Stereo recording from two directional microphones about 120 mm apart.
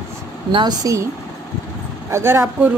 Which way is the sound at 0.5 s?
35° right (ahead or behind).